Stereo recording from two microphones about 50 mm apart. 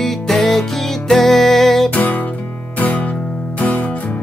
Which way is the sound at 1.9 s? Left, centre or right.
Left.